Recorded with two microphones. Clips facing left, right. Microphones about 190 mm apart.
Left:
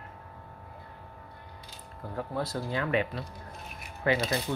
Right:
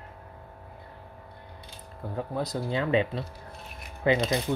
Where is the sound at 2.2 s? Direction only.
15° right (ahead or behind).